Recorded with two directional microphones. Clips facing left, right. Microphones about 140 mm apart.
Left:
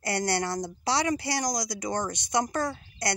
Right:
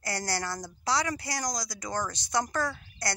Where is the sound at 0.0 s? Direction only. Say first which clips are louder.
Left 5 dB; 25° left (ahead or behind).